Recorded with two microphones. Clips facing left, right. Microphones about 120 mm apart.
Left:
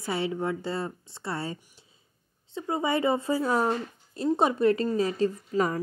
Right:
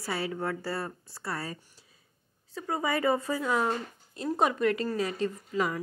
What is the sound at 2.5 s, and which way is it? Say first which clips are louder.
A woman's voice: left 3 dB; 25° left (ahead or behind).